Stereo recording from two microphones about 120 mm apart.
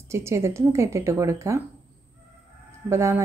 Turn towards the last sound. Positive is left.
turn(degrees=-20)  # may be behind; listen again after turning